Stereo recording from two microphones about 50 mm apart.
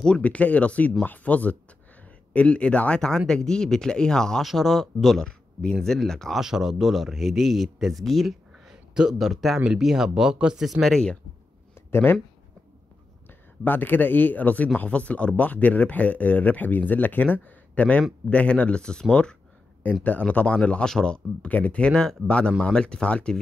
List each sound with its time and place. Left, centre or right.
0.2 s speech: left
3.0 s speech: centre
4.4 s speech: centre
5.2 s speech: centre
6.4 s speech: centre
10.6 s speech: centre
11.7 s a sound: left
13.3 s speech: left; by 19.3 s centre
19.8 s speech: left
21.5 s speech: left
21.9 s speech: centre